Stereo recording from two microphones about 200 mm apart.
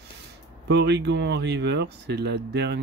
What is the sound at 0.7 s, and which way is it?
Speech, 60° right (ahead or behind).